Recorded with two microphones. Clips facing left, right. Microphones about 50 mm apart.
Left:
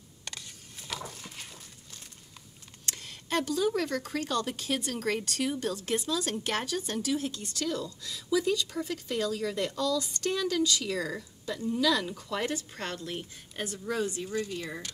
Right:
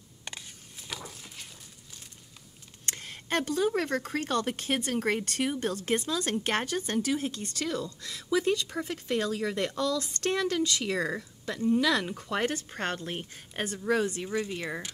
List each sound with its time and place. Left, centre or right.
0.8 s dog: centre
2.9 s speech: right
14.3 s speech: right